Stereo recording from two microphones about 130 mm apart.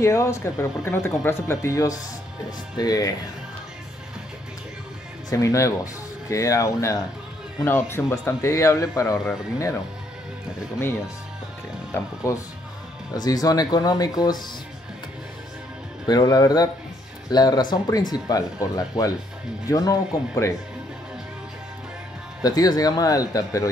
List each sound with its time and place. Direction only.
0.0 s speech: 20° left (ahead or behind)
5.3 s speech: 25° left (ahead or behind)
11.9 s speech: 25° left (ahead or behind)
16.1 s speech: 30° left (ahead or behind)
22.4 s speech: 30° left (ahead or behind)